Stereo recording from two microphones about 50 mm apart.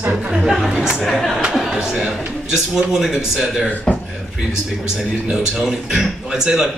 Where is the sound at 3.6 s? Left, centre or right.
Centre.